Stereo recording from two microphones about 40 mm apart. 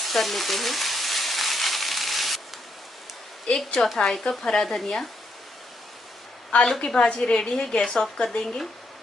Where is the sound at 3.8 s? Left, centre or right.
Left.